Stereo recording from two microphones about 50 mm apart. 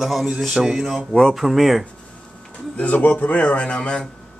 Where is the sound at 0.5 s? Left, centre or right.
Centre.